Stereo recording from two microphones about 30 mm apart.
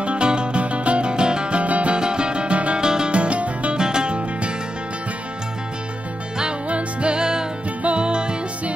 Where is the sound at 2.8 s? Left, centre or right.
Right.